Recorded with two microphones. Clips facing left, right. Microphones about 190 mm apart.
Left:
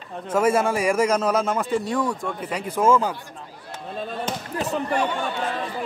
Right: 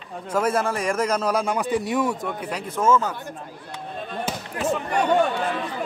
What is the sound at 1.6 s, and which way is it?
Speech, 15° right (ahead or behind).